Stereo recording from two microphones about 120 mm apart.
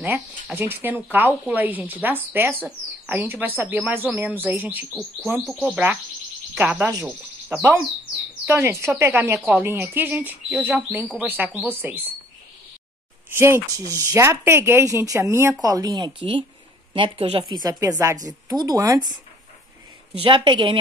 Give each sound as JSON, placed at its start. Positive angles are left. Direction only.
{"t": 0.0, "sound": "speech", "side_deg": -15}
{"t": 5.4, "sound": "speech", "side_deg": 0}
{"t": 6.6, "sound": "speech", "side_deg": -15}
{"t": 6.9, "sound": "a woman's voice", "side_deg": -30}
{"t": 7.4, "sound": "a woman's voice", "side_deg": -20}
{"t": 13.3, "sound": "a woman's voice", "side_deg": -20}
{"t": 17.5, "sound": "speech", "side_deg": -30}
{"t": 20.2, "sound": "a woman's voice", "side_deg": -45}